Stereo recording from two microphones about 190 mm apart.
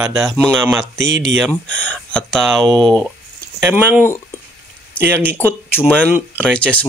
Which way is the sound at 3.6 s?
10° right (ahead or behind).